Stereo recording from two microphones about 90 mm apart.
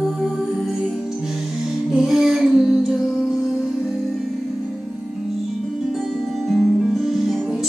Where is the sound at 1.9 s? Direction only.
5° right (ahead or behind).